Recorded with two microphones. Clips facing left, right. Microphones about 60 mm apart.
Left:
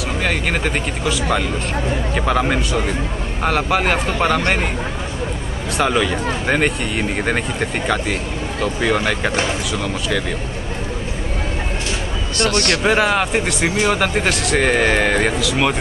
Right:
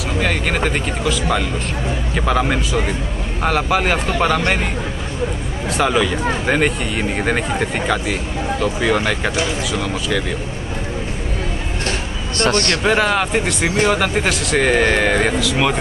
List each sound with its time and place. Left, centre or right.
0.2 s speech: centre
2.1 s speech: centre
5.8 s speech: centre
12.4 s a man's voice: right
12.8 s speech: centre